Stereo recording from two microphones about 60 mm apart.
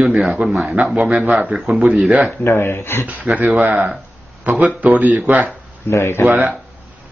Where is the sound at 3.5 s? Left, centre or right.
Centre.